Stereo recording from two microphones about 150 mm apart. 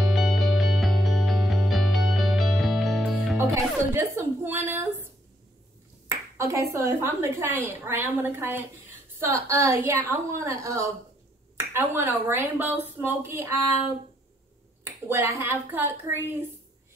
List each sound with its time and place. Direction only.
0.0 s music: centre (ahead or behind)
3.9 s speech: 15° right (ahead or behind)
6.0 s a woman's voice: 20° right (ahead or behind)
14.9 s speech: 15° right (ahead or behind)